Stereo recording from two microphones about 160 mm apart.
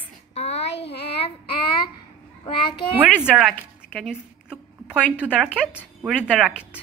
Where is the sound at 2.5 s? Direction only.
30° left (ahead or behind).